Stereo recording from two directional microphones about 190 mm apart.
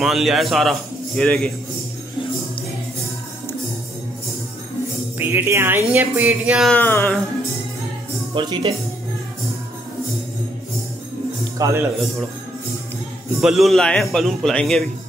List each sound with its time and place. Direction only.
0.0 s a man's voice: centre (ahead or behind)
5.2 s speech: 10° right (ahead or behind)
6.8 s music: 10° left (ahead or behind)
8.4 s speech: 25° right (ahead or behind)
11.5 s a man's voice: 20° right (ahead or behind)
11.8 s a man's voice: centre (ahead or behind)
13.4 s a man's voice: centre (ahead or behind)